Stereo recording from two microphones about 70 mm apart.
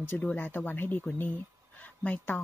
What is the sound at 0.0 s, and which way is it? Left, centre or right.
Speech, left.